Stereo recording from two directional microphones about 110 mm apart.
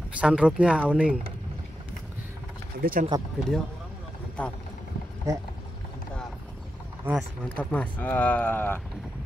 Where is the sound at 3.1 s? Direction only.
35° right (ahead or behind).